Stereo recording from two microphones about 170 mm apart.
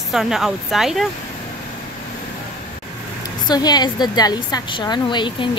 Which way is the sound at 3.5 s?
25° left (ahead or behind).